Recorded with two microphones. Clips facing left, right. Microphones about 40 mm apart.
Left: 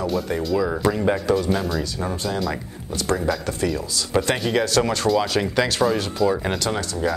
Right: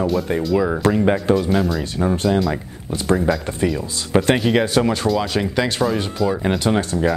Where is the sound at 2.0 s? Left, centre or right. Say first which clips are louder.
Right 7 dB; centre.